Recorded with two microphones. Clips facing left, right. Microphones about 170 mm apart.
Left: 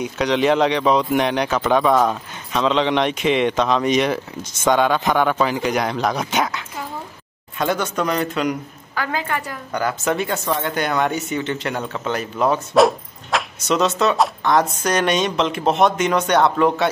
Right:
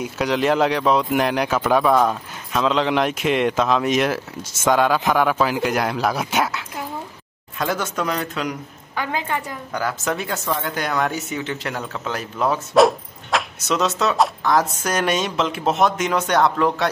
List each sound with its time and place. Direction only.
0.0 s speech: 5° right (ahead or behind)
8.9 s a woman's voice: 20° right (ahead or behind)
9.7 s speech: centre (ahead or behind)